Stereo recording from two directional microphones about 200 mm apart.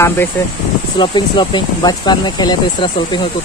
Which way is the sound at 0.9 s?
25° left (ahead or behind).